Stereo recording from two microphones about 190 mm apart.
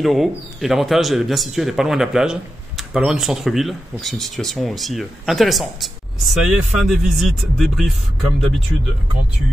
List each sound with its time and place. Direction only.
0.0 s speech: centre (ahead or behind)